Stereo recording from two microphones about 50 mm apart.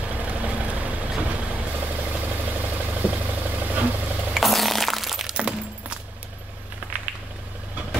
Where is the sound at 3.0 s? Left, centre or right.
Right.